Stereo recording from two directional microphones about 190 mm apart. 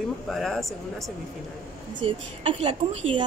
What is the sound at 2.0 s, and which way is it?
A woman's voice, 30° right (ahead or behind).